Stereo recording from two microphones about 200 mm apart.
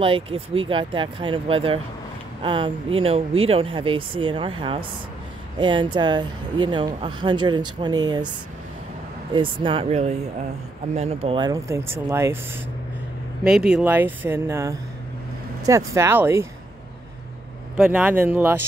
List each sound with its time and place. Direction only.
0.0 s speech: 25° right (ahead or behind)
9.3 s speech: 25° right (ahead or behind)
13.4 s speech: 5° right (ahead or behind)
17.7 s speech: 5° right (ahead or behind)